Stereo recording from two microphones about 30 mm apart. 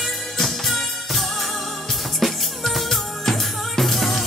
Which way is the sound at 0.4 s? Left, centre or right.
Centre.